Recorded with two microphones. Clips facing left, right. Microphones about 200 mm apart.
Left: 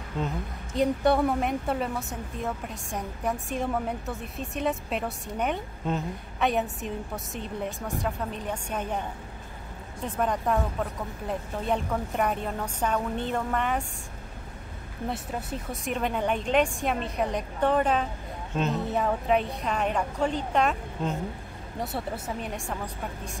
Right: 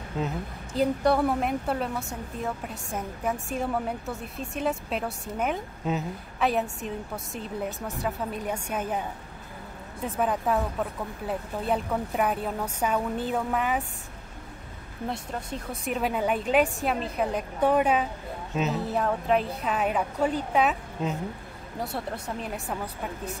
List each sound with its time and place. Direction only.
0.2 s a woman's voice: 5° right (ahead or behind)
10.0 s a woman's voice: 5° right (ahead or behind)
15.0 s a woman's voice: centre (ahead or behind)